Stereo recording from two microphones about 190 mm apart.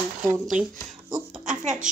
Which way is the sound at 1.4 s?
40° right (ahead or behind).